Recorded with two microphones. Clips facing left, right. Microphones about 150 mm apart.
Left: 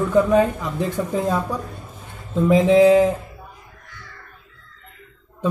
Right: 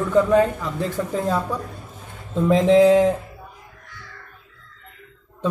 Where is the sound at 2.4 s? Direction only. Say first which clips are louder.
Left 1 dB; 10° left (ahead or behind).